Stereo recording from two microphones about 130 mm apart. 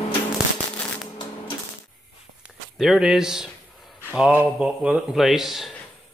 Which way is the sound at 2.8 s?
Centre (ahead or behind).